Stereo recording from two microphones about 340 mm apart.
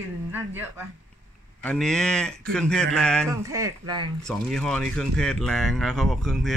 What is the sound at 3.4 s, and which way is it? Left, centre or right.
Speech, centre.